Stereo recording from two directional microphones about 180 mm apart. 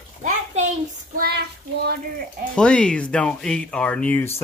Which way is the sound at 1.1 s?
55° right (ahead or behind).